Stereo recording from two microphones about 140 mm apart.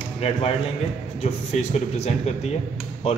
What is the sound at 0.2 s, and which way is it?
A man's voice, 50° left (ahead or behind).